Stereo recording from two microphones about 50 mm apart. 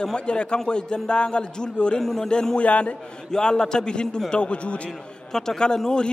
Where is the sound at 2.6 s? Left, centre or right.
Left.